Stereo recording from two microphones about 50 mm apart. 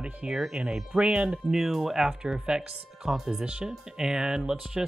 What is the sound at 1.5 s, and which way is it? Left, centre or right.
Speech, centre.